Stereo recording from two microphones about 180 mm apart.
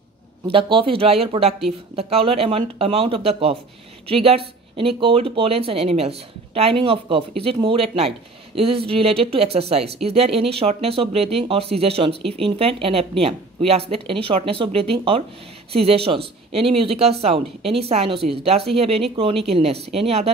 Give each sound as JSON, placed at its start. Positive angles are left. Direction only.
{"t": 0.5, "sound": "speech", "side_deg": -30}